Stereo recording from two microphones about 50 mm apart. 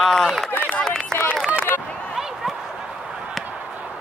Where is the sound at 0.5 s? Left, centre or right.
Left.